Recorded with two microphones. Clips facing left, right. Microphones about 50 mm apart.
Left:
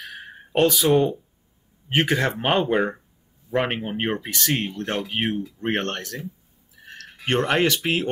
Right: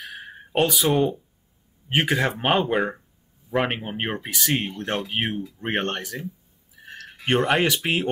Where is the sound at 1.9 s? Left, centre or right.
Centre.